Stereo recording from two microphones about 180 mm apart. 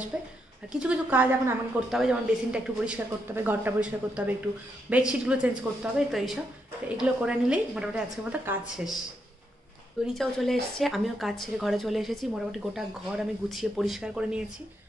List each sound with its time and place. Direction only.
0.1 s a woman's voice: 5° right (ahead or behind)
10.0 s a woman's voice: centre (ahead or behind)